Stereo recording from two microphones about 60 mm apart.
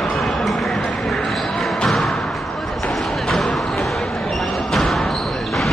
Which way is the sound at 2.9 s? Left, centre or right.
Centre.